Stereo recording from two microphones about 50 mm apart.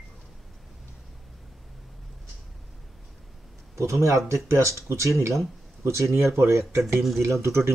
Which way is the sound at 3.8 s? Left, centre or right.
Right.